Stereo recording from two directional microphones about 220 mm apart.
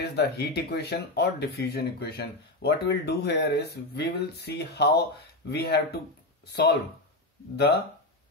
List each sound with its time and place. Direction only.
0.0 s speech: 45° left (ahead or behind)
7.5 s speech: 45° left (ahead or behind)